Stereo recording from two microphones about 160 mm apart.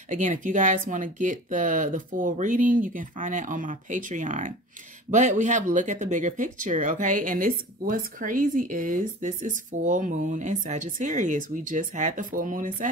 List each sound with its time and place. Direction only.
0.1 s speech: 50° right (ahead or behind)